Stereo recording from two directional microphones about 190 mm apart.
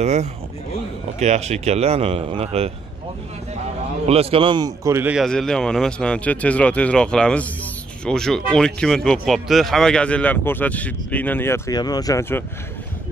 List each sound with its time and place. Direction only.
0.0 s speech: 35° right (ahead or behind)
4.1 s a man's voice: 30° right (ahead or behind); by 5.2 s 10° right (ahead or behind)
5.2 s speech: centre (ahead or behind)